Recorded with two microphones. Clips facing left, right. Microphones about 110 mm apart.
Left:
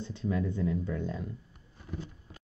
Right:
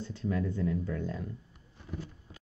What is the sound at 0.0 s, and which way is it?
Speech, 20° left (ahead or behind).